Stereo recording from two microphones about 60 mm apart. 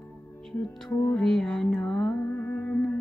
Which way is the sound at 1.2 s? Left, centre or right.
Centre.